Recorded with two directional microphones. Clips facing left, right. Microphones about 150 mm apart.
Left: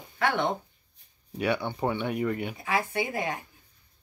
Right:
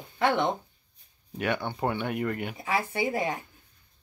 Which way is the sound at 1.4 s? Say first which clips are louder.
Left 1 dB; centre (ahead or behind).